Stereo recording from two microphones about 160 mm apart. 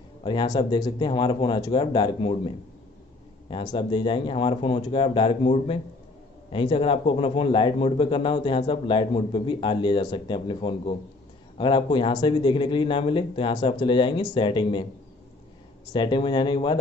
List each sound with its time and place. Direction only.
0.2 s a man's voice: 30° left (ahead or behind)
15.9 s speech: 30° left (ahead or behind)